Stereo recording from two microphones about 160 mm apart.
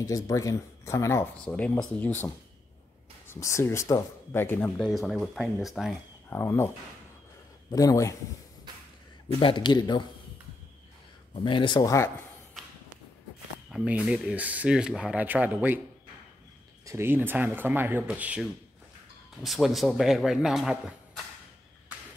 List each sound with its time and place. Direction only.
0.0 s speech: 20° left (ahead or behind); by 5.9 s centre (ahead or behind)
6.3 s speech: 15° left (ahead or behind)
7.7 s speech: 20° left (ahead or behind)
9.4 s speech: 30° left (ahead or behind)
11.3 s speech: 30° left (ahead or behind)
13.7 s speech: 5° right (ahead or behind)
16.8 s speech: 15° right (ahead or behind)